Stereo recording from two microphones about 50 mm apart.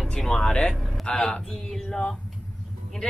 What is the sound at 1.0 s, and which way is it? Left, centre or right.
Speech, centre.